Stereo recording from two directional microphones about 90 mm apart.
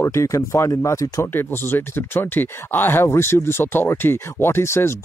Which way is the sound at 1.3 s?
25° left (ahead or behind).